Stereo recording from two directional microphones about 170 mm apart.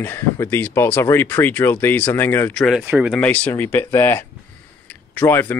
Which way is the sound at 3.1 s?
10° left (ahead or behind).